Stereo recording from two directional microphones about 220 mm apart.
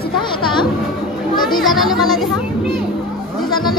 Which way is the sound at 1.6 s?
Centre (ahead or behind).